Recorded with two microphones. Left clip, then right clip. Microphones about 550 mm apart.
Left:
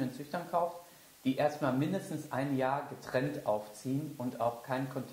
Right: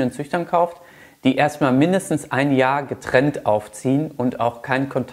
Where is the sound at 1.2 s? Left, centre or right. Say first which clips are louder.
Right 13 dB; right.